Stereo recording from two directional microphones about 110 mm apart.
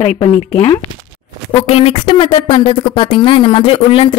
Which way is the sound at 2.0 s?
45° left (ahead or behind).